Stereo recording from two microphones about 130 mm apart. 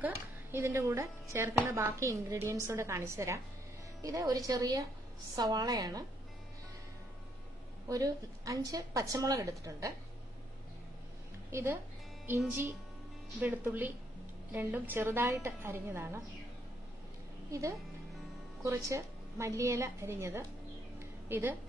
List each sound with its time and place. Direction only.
0.0 s a woman's voice: 20° right (ahead or behind)
7.9 s speech: 25° right (ahead or behind)
11.5 s a woman's voice: 20° right (ahead or behind)
17.5 s a woman's voice: 25° right (ahead or behind)